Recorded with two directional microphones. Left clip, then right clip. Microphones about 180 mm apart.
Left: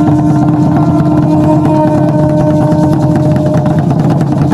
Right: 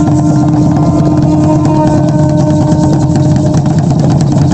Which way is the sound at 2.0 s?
20° right (ahead or behind).